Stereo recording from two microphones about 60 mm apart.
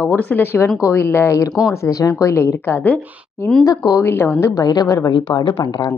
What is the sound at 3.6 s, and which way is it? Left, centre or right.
Speech, left.